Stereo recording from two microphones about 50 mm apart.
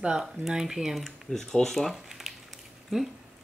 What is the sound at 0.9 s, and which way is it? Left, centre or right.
Speech, centre.